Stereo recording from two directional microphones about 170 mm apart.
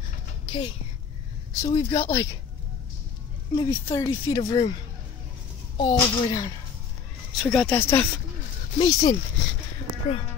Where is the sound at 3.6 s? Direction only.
25° left (ahead or behind).